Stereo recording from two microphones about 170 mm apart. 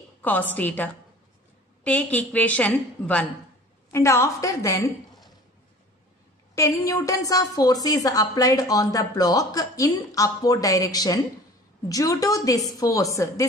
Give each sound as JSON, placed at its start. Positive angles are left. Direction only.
{"t": 0.2, "sound": "a woman's voice", "side_deg": 10}
{"t": 1.9, "sound": "a woman's voice", "side_deg": 10}
{"t": 6.5, "sound": "a woman's voice", "side_deg": 15}